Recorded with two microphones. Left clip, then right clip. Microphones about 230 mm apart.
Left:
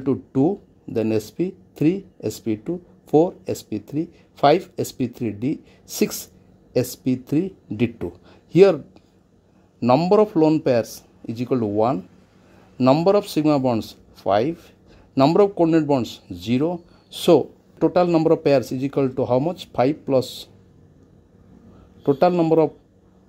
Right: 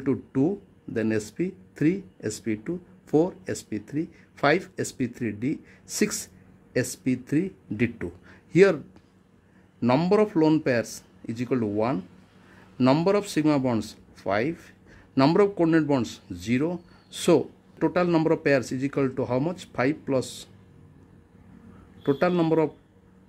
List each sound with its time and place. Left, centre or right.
0.0 s speech: centre
9.8 s speech: centre
22.2 s speech: centre